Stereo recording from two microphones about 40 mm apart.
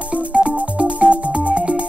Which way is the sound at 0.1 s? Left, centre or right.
Right.